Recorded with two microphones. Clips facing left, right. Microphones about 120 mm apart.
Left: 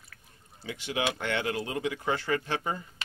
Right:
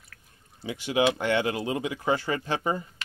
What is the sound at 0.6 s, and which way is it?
Speech, 15° right (ahead or behind).